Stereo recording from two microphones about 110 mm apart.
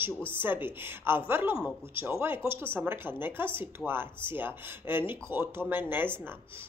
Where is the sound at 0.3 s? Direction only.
20° right (ahead or behind).